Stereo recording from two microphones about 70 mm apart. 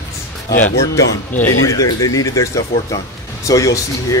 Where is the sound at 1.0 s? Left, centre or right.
Left.